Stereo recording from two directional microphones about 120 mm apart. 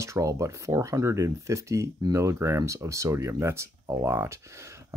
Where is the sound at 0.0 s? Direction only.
25° right (ahead or behind).